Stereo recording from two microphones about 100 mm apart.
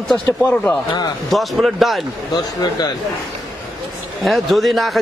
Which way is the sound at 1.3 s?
Centre (ahead or behind).